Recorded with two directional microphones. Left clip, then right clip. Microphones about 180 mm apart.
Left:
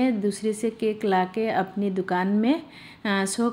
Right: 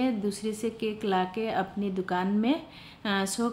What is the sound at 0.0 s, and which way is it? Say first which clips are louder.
A woman's voice: left 5 dB; 20° left (ahead or behind).